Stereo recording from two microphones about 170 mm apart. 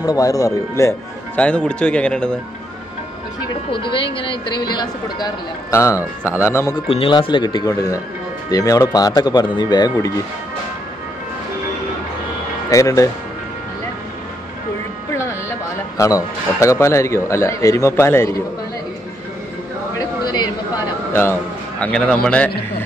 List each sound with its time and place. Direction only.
0.0 s a woman's voice: 20° left (ahead or behind)
3.7 s a woman's voice: 30° left (ahead or behind)
6.9 s a woman's voice: 30° left (ahead or behind)
12.6 s a woman's voice: 20° left (ahead or behind)
16.0 s speech: 20° left (ahead or behind)
20.2 s a man's voice: 25° left (ahead or behind); by 22.5 s 5° left (ahead or behind)